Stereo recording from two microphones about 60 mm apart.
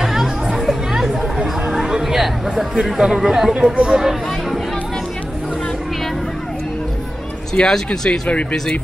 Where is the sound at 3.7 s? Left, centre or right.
Centre.